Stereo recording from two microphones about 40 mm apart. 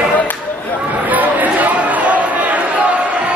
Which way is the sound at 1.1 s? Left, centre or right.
Right.